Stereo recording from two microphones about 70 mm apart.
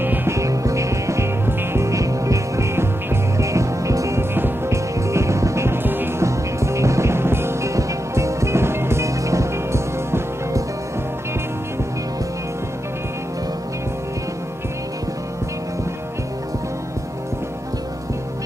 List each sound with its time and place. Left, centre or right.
0.0 s music: right
0.3 s music: right
4.2 s music: right
6.2 s music: right